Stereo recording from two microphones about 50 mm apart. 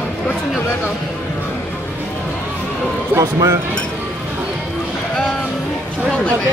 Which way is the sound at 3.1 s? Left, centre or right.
Right.